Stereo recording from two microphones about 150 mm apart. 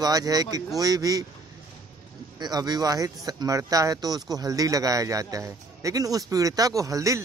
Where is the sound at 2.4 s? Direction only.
25° right (ahead or behind).